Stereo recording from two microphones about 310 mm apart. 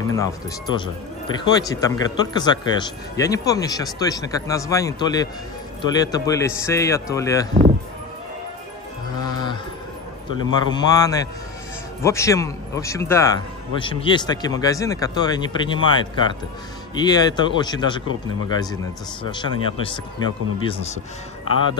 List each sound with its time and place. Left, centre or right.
0.1 s speech: centre
9.2 s mantra: centre
10.3 s speech: centre
16.9 s speech: centre